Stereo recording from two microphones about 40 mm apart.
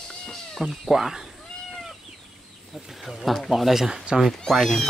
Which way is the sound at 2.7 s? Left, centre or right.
Centre.